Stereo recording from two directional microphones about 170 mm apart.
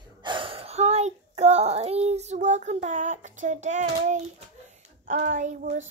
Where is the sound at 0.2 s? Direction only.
30° right (ahead or behind); by 4.2 s 45° right (ahead or behind).